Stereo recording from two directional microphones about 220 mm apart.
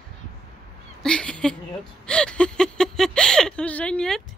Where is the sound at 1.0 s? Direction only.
5° left (ahead or behind).